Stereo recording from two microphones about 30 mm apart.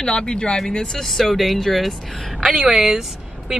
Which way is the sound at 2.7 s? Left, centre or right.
Centre.